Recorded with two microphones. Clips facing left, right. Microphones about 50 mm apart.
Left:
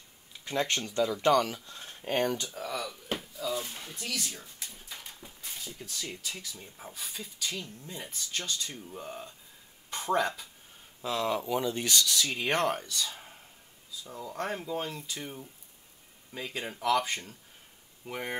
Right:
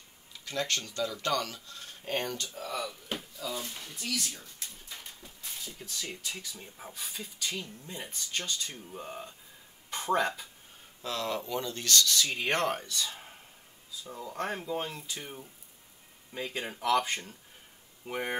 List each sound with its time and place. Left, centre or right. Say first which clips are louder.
0.5 s speech: left 3 dB; left
2.5 s speech: even; centre
4.4 s a sound: left 1 dB; centre
5.7 s speech: left 1 dB; centre
11.0 s speech: left 3 dB; centre